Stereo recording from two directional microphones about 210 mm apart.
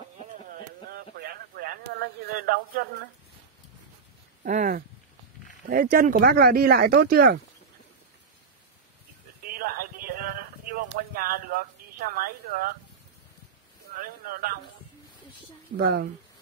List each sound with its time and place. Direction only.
0.3 s a sound: 45° right (ahead or behind)
4.4 s speech: 40° right (ahead or behind)
9.4 s a sound: 45° right (ahead or behind)
12.3 s speech: 45° right (ahead or behind)
13.9 s speech: 45° right (ahead or behind)
15.8 s speech: 45° right (ahead or behind)